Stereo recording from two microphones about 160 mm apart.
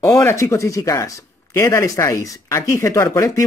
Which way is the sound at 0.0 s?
20° left (ahead or behind).